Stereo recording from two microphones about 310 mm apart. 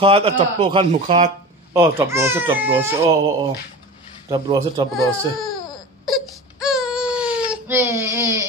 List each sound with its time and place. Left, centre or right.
0.0 s a man's voice: centre
1.7 s speech: centre
4.3 s speech: centre
4.9 s speech: centre
6.0 s crying: centre